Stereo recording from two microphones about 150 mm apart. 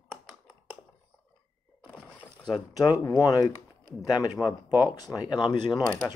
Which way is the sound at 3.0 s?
25° left (ahead or behind).